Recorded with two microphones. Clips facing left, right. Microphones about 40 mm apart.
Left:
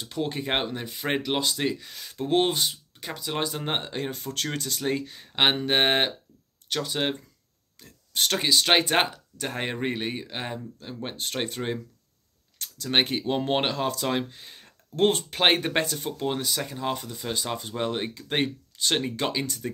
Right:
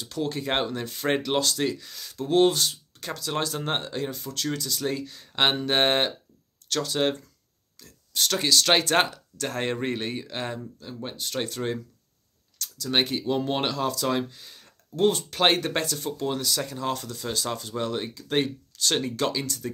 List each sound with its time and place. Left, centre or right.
0.0 s speech: left
0.5 s speech: centre
3.9 s speech: left; by 7.2 s centre
7.8 s a sound: left
8.4 s speech: centre
10.8 s speech: left